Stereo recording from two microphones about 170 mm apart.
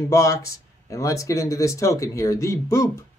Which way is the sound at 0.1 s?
20° left (ahead or behind).